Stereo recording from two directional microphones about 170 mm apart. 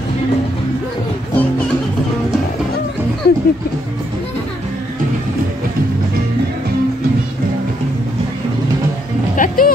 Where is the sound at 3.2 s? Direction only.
65° left (ahead or behind).